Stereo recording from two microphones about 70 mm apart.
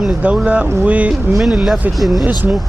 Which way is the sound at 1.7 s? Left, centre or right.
Centre.